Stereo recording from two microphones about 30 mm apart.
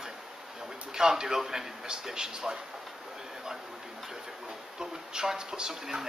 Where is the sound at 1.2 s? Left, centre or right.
Centre.